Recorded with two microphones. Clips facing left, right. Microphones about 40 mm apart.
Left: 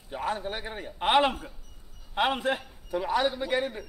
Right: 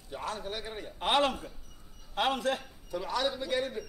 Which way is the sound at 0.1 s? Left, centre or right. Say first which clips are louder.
Left 5 dB; left.